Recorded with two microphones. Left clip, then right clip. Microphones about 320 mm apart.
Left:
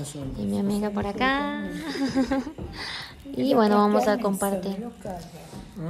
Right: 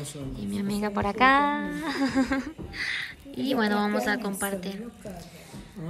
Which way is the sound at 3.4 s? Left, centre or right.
Centre.